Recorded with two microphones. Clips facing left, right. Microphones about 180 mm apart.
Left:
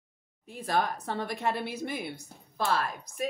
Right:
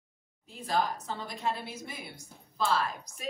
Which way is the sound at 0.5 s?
60° left (ahead or behind).